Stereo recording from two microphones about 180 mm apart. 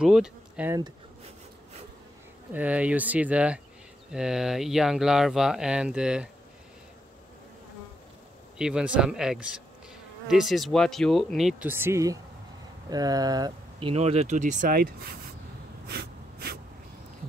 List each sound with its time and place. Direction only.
0.0 s speech: 5° right (ahead or behind)
0.7 s speech: 20° right (ahead or behind)
2.5 s speech: 10° right (ahead or behind)
8.5 s speech: 5° right (ahead or behind)
11.7 s speech: 15° right (ahead or behind); by 15.1 s 55° right (ahead or behind)
15.9 s snort: 60° right (ahead or behind)